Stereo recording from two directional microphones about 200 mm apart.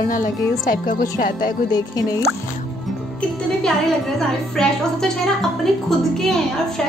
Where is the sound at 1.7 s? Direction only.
20° left (ahead or behind).